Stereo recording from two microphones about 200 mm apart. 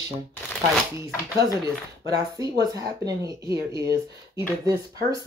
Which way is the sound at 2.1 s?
20° right (ahead or behind).